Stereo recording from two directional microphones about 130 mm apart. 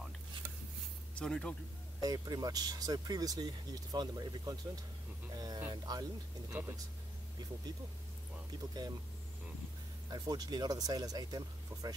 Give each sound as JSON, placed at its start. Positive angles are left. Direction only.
{"t": 1.1, "sound": "speech", "side_deg": 5}
{"t": 2.0, "sound": "speech", "side_deg": -30}
{"t": 5.3, "sound": "a sound", "side_deg": -30}
{"t": 5.7, "sound": "music", "side_deg": -30}
{"t": 6.5, "sound": "speech", "side_deg": -15}
{"t": 8.5, "sound": "speech", "side_deg": -30}
{"t": 10.0, "sound": "speech", "side_deg": -30}